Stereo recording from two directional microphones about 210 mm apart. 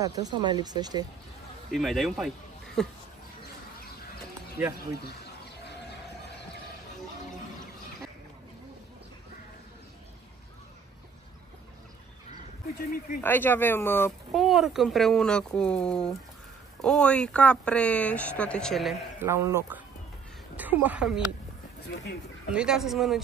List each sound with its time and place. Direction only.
0.0 s speech: 15° right (ahead or behind)
1.7 s speech: centre (ahead or behind)
4.6 s a man's voice: 10° right (ahead or behind)
4.9 s speech: 50° left (ahead or behind)
13.2 s speech: 10° left (ahead or behind)
14.3 s speech: centre (ahead or behind)
19.1 s a man's voice: 10° right (ahead or behind)
22.5 s speech: 5° right (ahead or behind)